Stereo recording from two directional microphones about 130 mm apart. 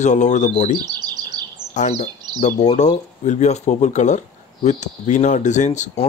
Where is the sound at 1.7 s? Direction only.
70° left (ahead or behind).